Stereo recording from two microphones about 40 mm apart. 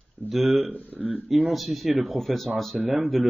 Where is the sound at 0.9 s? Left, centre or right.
Right.